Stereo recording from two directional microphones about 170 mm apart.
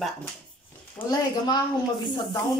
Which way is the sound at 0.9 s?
25° left (ahead or behind).